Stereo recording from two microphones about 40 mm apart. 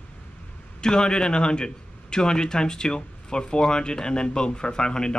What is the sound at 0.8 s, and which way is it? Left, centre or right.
Speech, left.